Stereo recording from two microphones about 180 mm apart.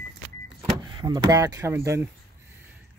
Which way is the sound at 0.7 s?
25° right (ahead or behind).